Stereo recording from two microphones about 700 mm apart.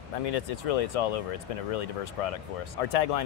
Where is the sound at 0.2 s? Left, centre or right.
Left.